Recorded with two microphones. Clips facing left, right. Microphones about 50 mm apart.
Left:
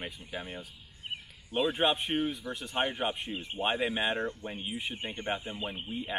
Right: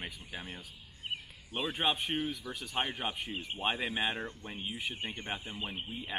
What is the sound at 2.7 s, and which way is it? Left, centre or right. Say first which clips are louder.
Speech: left 4 dB; left.